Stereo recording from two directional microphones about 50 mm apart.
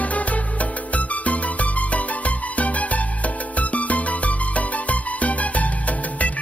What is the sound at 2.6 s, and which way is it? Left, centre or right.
Music, left.